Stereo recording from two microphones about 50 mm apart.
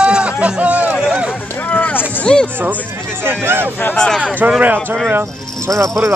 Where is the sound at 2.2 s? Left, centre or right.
Centre.